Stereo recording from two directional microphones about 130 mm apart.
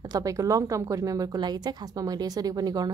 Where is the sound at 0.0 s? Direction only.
25° right (ahead or behind).